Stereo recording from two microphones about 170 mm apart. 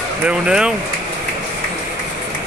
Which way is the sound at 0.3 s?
5° right (ahead or behind).